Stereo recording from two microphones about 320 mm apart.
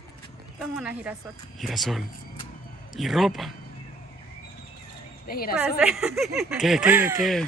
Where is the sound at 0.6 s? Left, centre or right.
Centre.